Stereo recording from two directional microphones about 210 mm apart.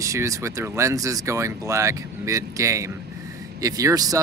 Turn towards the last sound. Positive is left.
turn(degrees=-15)  # may be behind; listen again after turning